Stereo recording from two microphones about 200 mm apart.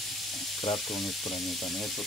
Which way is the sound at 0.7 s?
Centre (ahead or behind).